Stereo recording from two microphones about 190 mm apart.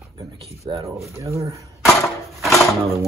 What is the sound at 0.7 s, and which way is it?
Speech, 15° right (ahead or behind).